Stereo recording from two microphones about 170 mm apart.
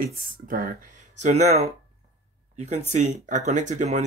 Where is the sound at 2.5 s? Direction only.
40° right (ahead or behind).